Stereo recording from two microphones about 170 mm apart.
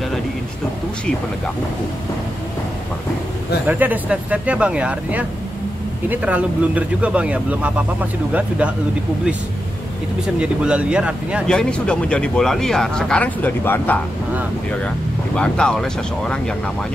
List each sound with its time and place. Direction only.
3.6 s speech: 10° right (ahead or behind)
10.2 s speech: 5° right (ahead or behind); by 14.0 s 10° left (ahead or behind)
15.3 s speech: 5° left (ahead or behind)